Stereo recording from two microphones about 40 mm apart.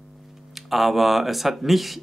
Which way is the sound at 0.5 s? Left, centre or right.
Centre.